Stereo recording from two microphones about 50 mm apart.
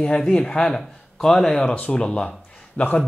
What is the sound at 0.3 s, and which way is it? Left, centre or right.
Speech, centre.